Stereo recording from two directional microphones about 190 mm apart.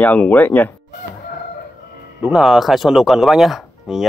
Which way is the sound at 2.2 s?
5° right (ahead or behind).